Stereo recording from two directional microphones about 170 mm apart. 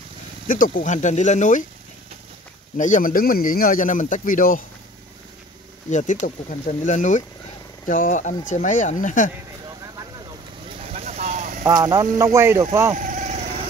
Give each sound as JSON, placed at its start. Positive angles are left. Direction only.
{"t": 0.5, "sound": "speech", "side_deg": 55}
{"t": 2.8, "sound": "speech", "side_deg": 50}
{"t": 5.9, "sound": "speech", "side_deg": 45}
{"t": 10.9, "sound": "vehicle", "side_deg": -40}
{"t": 11.6, "sound": "speech", "side_deg": -15}
{"t": 12.9, "sound": "vehicle", "side_deg": -45}